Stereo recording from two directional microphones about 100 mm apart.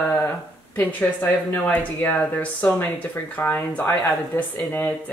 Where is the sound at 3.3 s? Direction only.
20° left (ahead or behind).